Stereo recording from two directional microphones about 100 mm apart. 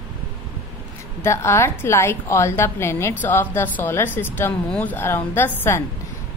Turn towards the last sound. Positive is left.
turn(degrees=25)  # may be behind; listen again after turning